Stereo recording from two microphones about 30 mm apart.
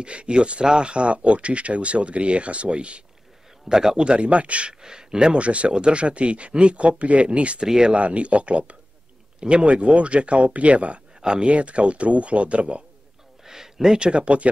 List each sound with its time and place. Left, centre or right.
0.0 s speech: right
3.6 s a man's voice: right
4.0 s speech: right
4.3 s speech: right
4.8 s speech: right
5.3 s speech: right
7.6 s a man's voice: right
7.9 s speech: right
11.1 s speech: right
11.4 s speech: right
13.5 s a sound: centre
13.9 s speech: right